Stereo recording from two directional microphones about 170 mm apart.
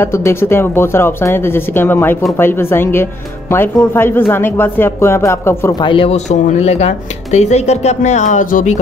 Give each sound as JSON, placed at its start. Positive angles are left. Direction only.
{"t": 0.0, "sound": "speech", "side_deg": 15}
{"t": 5.8, "sound": "speech", "side_deg": 30}